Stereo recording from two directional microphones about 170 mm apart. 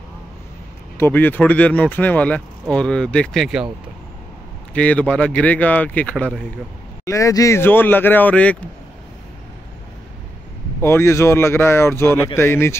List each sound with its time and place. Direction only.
0.9 s speech: 10° left (ahead or behind)
4.7 s speech: 10° left (ahead or behind)
7.1 s speech: 20° left (ahead or behind)
10.8 s speech: 15° left (ahead or behind)